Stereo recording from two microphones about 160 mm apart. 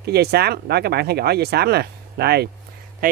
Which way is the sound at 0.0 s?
85° right.